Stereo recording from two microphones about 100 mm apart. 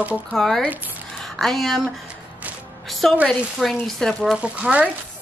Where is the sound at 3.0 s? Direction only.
5° left (ahead or behind).